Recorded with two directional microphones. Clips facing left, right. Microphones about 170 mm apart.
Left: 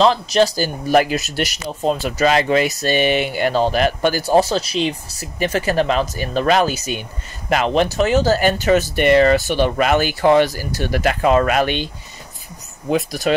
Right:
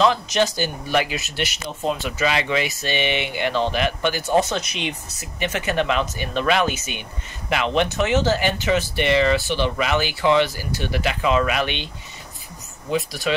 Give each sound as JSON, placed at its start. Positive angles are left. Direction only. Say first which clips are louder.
{"t": 0.0, "sound": "speech", "louder": "left 4 dB", "side_deg": 35}
{"t": 12.9, "sound": "speech", "louder": "left 4 dB", "side_deg": 45}